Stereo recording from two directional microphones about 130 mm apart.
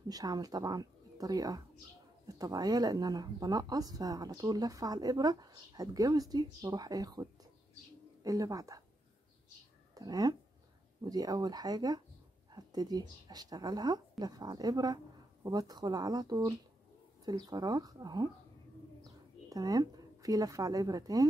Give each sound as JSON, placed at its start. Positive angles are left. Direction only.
{"t": 0.1, "sound": "speech", "side_deg": -30}
{"t": 9.9, "sound": "a woman's voice", "side_deg": -30}
{"t": 19.5, "sound": "speech", "side_deg": -30}